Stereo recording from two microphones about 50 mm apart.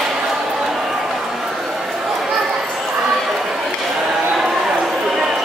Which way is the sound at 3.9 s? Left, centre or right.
Centre.